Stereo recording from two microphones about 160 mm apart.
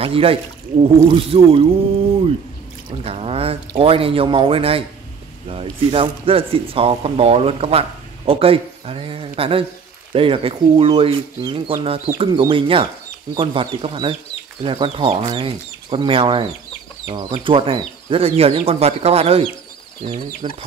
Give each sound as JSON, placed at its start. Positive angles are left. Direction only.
{"t": 0.0, "sound": "speech", "side_deg": -35}
{"t": 3.0, "sound": "speech", "side_deg": -40}